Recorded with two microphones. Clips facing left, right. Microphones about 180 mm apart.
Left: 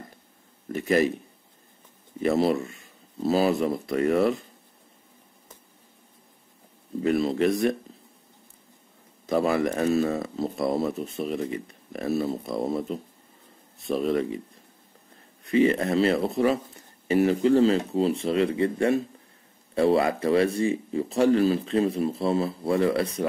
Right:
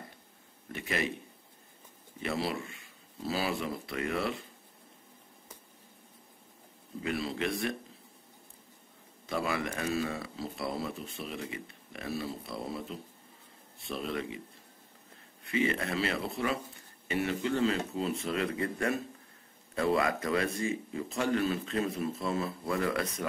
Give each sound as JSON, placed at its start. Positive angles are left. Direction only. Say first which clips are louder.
{"t": 0.7, "sound": "speech", "louder": "left 12 dB", "side_deg": 40}
{"t": 2.2, "sound": "speech", "louder": "left 11 dB", "side_deg": 40}
{"t": 7.0, "sound": "speech", "louder": "left 11 dB", "side_deg": 45}
{"t": 9.2, "sound": "speech", "louder": "left 10 dB", "side_deg": 40}
{"t": 15.4, "sound": "speech", "louder": "left 9 dB", "side_deg": 35}